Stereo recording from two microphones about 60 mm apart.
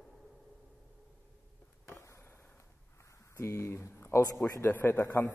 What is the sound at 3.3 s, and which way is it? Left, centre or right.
A man's voice, left.